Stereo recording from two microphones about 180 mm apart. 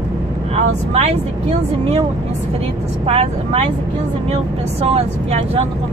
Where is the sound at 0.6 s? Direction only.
35° right (ahead or behind).